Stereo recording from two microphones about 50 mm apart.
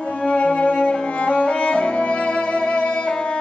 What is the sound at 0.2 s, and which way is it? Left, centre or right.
Music, left.